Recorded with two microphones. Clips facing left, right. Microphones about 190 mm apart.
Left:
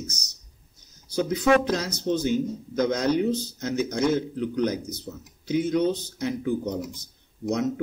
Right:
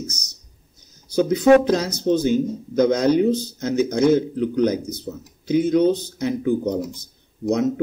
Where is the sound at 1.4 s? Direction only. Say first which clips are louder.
Right 7 dB; 25° right (ahead or behind).